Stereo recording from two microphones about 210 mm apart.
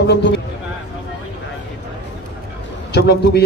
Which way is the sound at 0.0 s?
55° left (ahead or behind).